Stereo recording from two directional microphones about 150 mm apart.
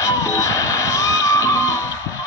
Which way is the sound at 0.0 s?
20° left (ahead or behind).